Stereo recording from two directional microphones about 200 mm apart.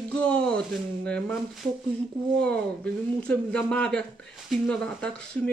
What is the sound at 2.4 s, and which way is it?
Speech, 5° left (ahead or behind).